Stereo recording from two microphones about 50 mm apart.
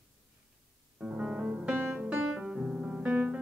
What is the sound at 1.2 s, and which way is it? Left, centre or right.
Music, right.